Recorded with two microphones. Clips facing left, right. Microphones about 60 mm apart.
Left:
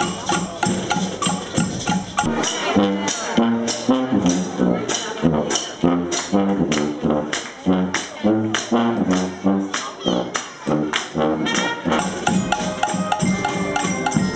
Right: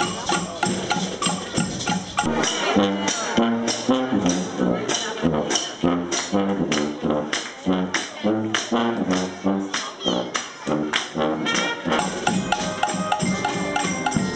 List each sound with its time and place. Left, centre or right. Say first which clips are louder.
0.0 s music: left 2 dB; centre
10.7 s brass instrument: left 3 dB; centre